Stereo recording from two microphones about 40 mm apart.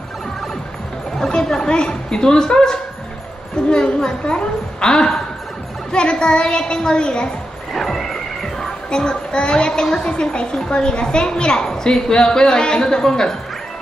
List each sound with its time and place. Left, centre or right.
1.4 s a woman's voice: centre
7.7 s music: centre
10.0 s a woman's voice: left